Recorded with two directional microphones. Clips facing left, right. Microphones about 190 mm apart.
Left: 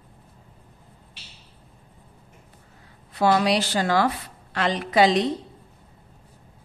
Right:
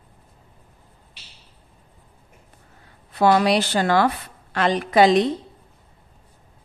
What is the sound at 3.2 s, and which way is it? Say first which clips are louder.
A woman's voice: right 3 dB; 55° right (ahead or behind).